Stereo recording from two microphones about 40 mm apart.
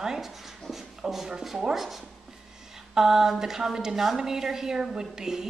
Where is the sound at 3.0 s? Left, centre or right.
Centre.